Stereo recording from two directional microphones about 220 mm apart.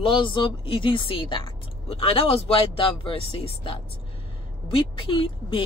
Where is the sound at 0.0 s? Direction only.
25° left (ahead or behind).